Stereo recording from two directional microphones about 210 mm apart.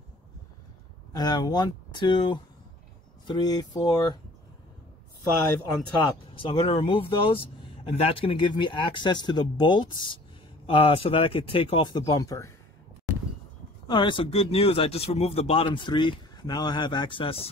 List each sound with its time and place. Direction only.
1.1 s speech: 20° left (ahead or behind)
6.0 s speech: 25° left (ahead or behind)
13.8 s speech: 20° left (ahead or behind)